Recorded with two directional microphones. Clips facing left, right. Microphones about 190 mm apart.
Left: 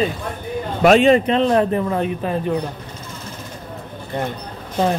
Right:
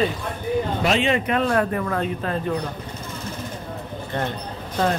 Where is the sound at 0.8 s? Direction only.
45° left (ahead or behind).